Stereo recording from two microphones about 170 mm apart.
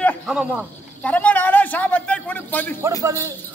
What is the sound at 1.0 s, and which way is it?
Speech, 10° left (ahead or behind).